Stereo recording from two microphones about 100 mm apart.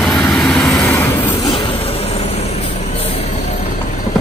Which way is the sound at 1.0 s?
30° left (ahead or behind).